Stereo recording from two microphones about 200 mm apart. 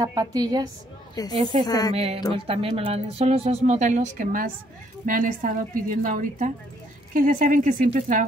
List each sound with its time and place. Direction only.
0.0 s a woman's voice: 20° right (ahead or behind)
1.7 s a woman's voice: 20° left (ahead or behind)
2.3 s speech: 30° right (ahead or behind)